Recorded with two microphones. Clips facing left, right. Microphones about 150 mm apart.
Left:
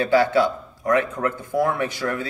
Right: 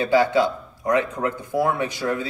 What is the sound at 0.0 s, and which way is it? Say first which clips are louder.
A man's voice: even; 15° right (ahead or behind).